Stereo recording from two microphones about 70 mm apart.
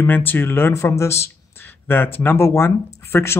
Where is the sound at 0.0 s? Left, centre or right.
Left.